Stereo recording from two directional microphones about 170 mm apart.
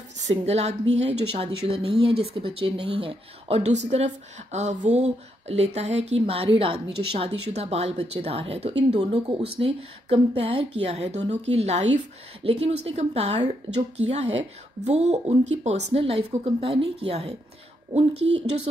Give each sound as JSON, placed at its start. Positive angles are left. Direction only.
{"t": 0.3, "sound": "speech", "side_deg": -40}